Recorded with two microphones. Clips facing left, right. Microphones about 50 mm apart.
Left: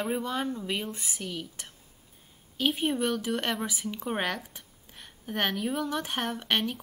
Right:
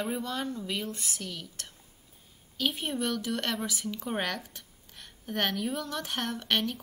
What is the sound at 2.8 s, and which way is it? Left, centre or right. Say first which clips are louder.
Speech: left 4 dB; centre.